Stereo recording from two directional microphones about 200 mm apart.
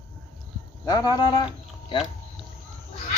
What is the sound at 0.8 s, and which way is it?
Speech, 20° left (ahead or behind).